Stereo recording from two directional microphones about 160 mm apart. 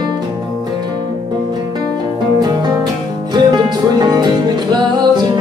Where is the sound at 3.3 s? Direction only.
25° right (ahead or behind).